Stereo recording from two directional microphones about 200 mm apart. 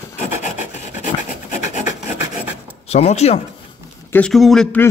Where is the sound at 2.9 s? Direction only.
35° left (ahead or behind).